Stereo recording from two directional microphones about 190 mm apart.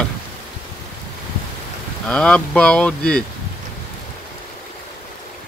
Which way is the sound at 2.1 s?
5° left (ahead or behind).